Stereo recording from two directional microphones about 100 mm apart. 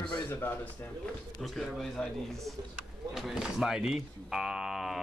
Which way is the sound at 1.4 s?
Centre (ahead or behind).